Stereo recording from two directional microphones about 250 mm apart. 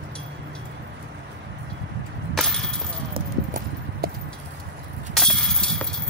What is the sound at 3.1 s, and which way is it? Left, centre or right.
Clip-clop, right.